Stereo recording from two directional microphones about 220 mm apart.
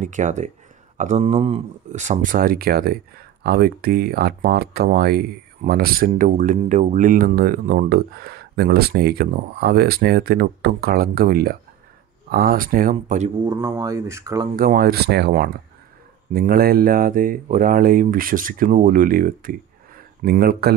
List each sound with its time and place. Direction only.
0.0 s speech: 35° right (ahead or behind)
13.4 s speech: 15° right (ahead or behind)
14.5 s speech: 40° right (ahead or behind)